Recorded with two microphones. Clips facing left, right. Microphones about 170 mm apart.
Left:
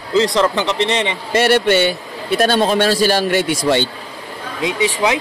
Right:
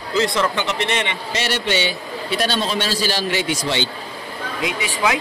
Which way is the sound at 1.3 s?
55° left (ahead or behind).